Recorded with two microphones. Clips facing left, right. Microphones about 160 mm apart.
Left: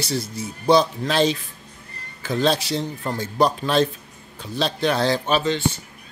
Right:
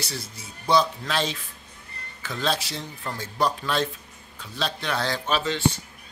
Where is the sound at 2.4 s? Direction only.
20° left (ahead or behind).